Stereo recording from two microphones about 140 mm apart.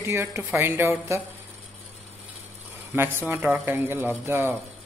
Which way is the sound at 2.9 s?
15° right (ahead or behind).